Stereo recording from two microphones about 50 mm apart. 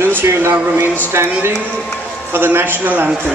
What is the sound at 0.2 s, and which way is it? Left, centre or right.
Speech, right.